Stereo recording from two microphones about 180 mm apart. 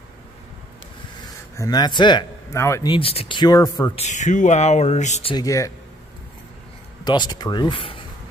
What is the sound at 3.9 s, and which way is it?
Speech, 40° left (ahead or behind).